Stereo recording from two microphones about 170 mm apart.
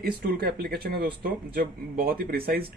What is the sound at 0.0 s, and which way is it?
Speech, 65° right (ahead or behind).